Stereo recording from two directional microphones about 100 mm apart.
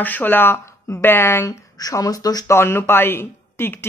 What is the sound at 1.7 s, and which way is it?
Speech, 40° left (ahead or behind).